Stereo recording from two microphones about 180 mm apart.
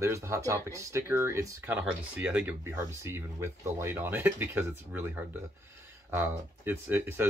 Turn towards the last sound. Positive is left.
turn(degrees=-10)  # may be behind; listen again after turning